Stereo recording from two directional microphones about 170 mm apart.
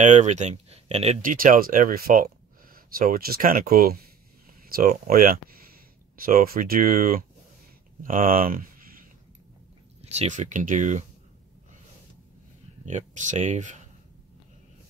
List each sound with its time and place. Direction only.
0.0 s speech: 45° right (ahead or behind)
10.0 s speech: 40° right (ahead or behind)
12.8 s speech: 45° right (ahead or behind)